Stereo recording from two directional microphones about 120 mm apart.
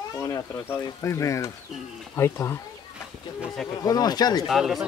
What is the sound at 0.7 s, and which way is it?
Speech, 25° left (ahead or behind).